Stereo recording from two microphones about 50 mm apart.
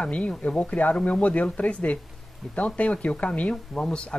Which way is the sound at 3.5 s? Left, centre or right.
Centre.